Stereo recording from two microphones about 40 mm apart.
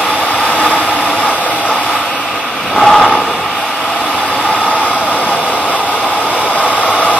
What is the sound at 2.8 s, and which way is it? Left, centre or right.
Vehicle, centre.